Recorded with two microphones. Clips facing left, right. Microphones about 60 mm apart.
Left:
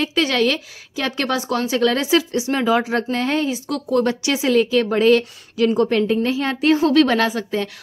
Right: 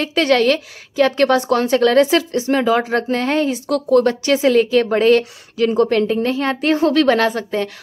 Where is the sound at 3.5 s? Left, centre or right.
Centre.